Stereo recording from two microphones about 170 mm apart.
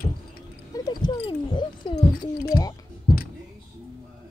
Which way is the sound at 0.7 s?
25° left (ahead or behind).